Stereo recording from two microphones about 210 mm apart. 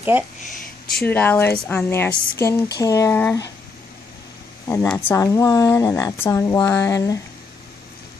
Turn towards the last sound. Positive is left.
turn(degrees=15)  # may be behind; listen again after turning